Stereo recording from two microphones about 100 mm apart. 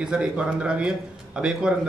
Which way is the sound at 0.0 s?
10° right (ahead or behind).